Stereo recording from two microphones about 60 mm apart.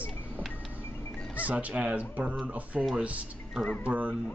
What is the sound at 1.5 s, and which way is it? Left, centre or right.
Speech, right.